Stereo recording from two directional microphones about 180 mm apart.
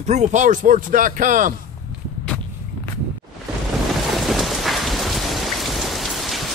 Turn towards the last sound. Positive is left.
turn(degrees=0)  # may be behind; listen again after turning